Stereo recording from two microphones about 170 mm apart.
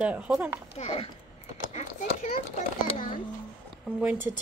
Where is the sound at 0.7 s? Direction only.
35° left (ahead or behind).